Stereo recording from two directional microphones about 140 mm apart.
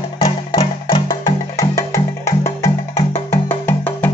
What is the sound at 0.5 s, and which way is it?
Music, 30° left (ahead or behind).